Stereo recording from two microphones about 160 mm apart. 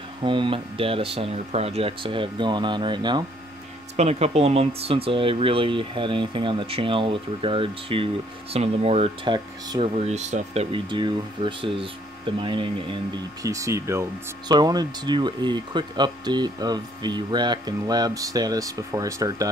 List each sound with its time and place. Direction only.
0.2 s speech: 30° right (ahead or behind)
3.9 s speech: 40° right (ahead or behind)
9.9 s speech: 45° right (ahead or behind); by 19.5 s 20° right (ahead or behind)